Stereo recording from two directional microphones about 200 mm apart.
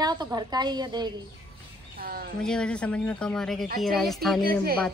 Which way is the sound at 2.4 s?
5° left (ahead or behind).